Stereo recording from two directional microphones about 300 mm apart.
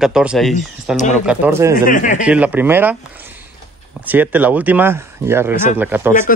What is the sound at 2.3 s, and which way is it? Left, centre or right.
Speech, centre.